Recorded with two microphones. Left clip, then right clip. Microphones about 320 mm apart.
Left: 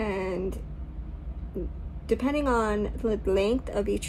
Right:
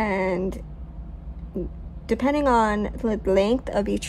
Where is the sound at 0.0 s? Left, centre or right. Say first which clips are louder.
Right 6 dB; right.